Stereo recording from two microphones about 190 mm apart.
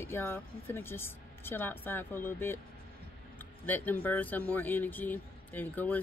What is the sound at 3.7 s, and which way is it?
Speech, 10° left (ahead or behind).